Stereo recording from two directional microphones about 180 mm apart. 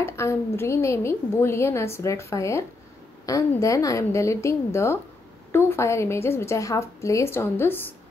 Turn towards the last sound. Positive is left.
turn(degrees=10)  # may be behind; listen again after turning